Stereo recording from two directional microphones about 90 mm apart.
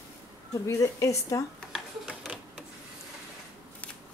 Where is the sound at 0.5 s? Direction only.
35° left (ahead or behind).